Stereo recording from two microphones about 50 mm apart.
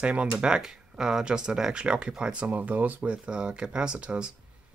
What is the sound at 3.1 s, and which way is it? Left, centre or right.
Speech, centre.